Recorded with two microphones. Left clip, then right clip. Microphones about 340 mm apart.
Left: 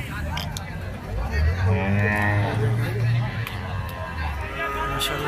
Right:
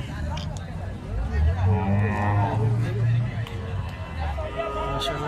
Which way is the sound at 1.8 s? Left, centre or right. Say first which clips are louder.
Left 5 dB; right.